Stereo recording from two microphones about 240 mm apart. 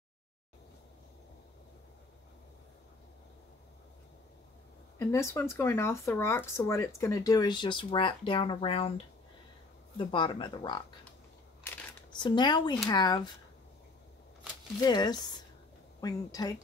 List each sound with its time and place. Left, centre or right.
5.0 s speech: centre
14.8 s speech: centre